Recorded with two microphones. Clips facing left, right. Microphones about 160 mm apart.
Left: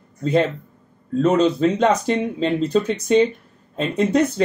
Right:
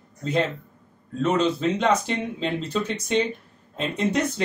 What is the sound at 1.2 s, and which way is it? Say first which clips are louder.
Speech: left 6 dB; 40° left (ahead or behind).